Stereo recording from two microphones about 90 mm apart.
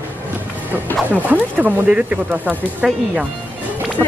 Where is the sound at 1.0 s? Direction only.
20° right (ahead or behind).